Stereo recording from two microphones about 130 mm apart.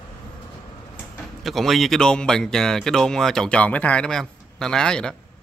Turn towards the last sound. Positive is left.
turn(degrees=5)  # may be behind; listen again after turning